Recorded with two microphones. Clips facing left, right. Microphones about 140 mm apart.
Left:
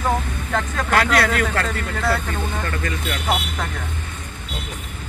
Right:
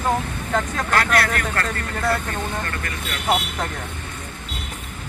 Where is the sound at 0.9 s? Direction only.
90° left.